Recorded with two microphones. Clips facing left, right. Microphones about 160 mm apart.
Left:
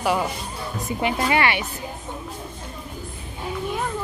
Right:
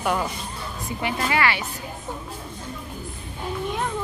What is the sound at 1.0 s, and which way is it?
Speech, 20° left (ahead or behind).